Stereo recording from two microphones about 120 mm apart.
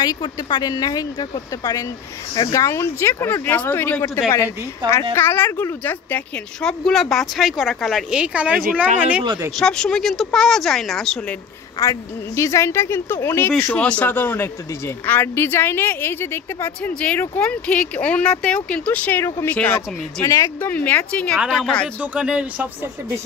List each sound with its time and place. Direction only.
0.0 s speech: 35° left (ahead or behind); by 4.0 s 15° left (ahead or behind)
5.1 s speech: 20° left (ahead or behind)
6.8 s speech: centre (ahead or behind)
9.6 s speech: 5° left (ahead or behind)
11.8 s a woman's voice: 25° left (ahead or behind)
20.2 s speech: 25° left (ahead or behind)
20.7 s a woman's voice: 15° left (ahead or behind)
22.0 s speech: 10° right (ahead or behind)